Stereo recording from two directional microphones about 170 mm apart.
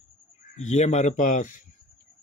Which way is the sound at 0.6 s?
40° left (ahead or behind).